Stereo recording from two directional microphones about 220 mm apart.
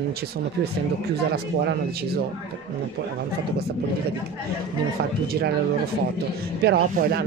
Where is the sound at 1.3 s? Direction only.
45° right (ahead or behind).